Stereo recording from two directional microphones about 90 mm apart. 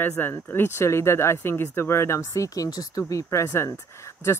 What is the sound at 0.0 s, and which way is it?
Speech, 25° left (ahead or behind).